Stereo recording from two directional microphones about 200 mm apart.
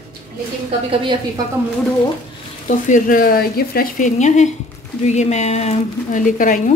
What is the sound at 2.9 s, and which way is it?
A woman's voice, 45° left (ahead or behind).